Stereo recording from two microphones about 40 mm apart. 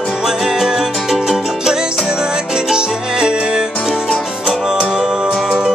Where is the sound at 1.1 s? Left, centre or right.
Centre.